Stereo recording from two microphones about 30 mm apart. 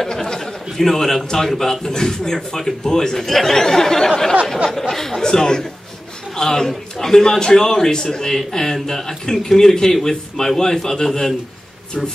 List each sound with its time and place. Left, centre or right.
0.1 s a man's voice: centre